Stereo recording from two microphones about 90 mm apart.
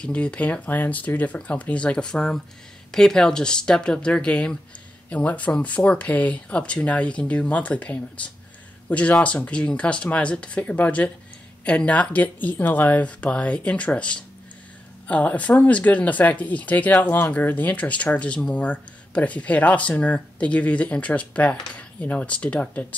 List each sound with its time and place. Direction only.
0.0 s speech: 10° left (ahead or behind)